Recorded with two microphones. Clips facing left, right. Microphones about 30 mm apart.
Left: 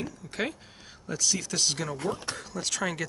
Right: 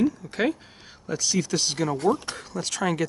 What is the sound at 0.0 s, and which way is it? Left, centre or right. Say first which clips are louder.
Speech: right 9 dB; centre.